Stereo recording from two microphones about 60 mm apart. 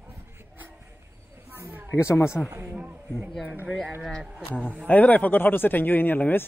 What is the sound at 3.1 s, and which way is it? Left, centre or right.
Speech, centre.